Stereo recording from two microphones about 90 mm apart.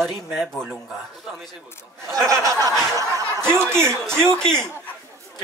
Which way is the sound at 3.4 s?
30° right (ahead or behind).